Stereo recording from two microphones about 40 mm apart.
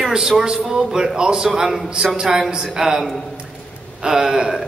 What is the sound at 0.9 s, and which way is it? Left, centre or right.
A man's voice, centre.